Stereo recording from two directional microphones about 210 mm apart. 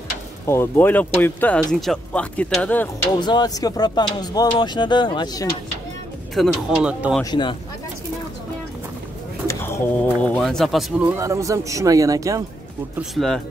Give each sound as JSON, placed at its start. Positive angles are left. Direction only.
{"t": 0.5, "sound": "speech", "side_deg": 10}
{"t": 3.2, "sound": "speech", "side_deg": 20}
{"t": 6.3, "sound": "speech", "side_deg": 0}
{"t": 7.2, "sound": "speech", "side_deg": 20}
{"t": 9.5, "sound": "speech", "side_deg": 10}
{"t": 13.1, "sound": "speech", "side_deg": 0}